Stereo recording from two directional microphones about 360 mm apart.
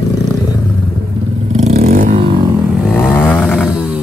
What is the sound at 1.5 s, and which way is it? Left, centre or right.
Vehicle, centre.